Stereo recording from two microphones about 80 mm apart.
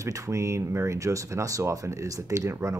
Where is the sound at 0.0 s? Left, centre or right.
Right.